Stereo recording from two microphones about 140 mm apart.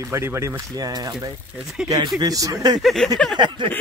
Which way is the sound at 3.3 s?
35° right (ahead or behind).